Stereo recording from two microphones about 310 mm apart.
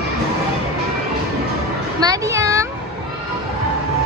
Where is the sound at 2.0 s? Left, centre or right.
Centre.